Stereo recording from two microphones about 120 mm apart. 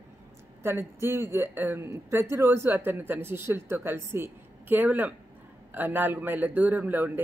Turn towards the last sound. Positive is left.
turn(degrees=-15)  # may be behind; listen again after turning